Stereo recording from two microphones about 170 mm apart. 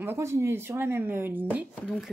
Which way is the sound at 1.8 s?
Centre (ahead or behind).